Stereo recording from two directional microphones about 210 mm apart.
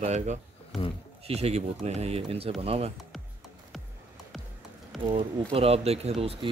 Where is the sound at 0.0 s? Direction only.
30° right (ahead or behind).